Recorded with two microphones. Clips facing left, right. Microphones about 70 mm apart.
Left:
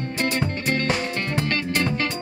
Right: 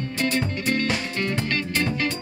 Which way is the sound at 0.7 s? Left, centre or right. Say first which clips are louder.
Left 1 dB; left.